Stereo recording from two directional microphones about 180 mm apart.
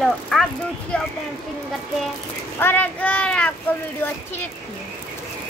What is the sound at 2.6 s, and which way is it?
Speech, 10° left (ahead or behind).